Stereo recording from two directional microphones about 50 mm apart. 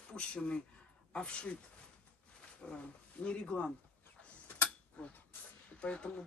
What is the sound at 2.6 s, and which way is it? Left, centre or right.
Speech, left.